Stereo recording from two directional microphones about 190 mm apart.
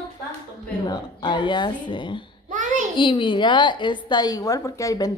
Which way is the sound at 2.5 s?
40° right (ahead or behind).